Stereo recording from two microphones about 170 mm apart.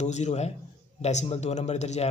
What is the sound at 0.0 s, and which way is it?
A man's voice, 40° left (ahead or behind).